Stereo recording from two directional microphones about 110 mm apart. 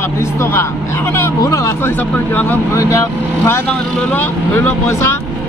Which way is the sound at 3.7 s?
10° left (ahead or behind).